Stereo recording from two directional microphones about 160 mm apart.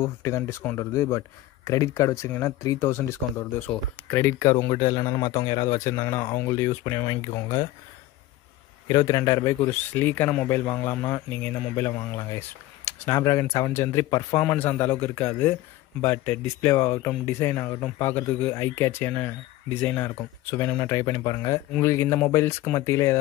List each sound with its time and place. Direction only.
0.0 s speech: 20° left (ahead or behind)
8.8 s speech: 25° left (ahead or behind)